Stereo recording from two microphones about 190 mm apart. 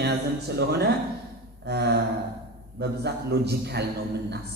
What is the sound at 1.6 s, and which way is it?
A woman's voice, 60° right (ahead or behind).